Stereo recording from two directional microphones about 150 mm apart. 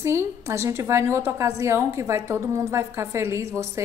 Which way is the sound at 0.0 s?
20° right (ahead or behind).